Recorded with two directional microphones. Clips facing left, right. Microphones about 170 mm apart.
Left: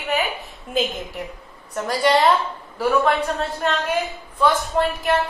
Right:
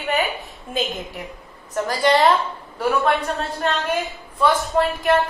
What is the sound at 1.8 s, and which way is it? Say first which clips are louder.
A woman's voice: even; centre (ahead or behind).